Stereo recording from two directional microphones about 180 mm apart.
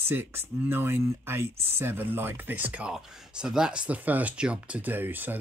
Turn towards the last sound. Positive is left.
turn(degrees=-10)  # may be behind; listen again after turning